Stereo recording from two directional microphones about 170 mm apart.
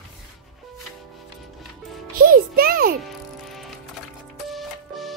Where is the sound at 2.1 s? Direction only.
55° right (ahead or behind).